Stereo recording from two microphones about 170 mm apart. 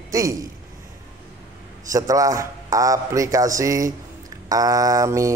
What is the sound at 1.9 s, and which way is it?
Speech, 20° right (ahead or behind).